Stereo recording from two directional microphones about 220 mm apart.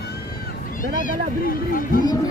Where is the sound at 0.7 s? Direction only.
40° left (ahead or behind).